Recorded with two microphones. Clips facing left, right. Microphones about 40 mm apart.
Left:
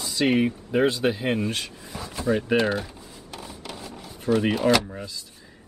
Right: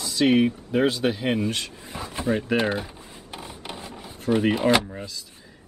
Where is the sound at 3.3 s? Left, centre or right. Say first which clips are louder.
Right 1 dB; right.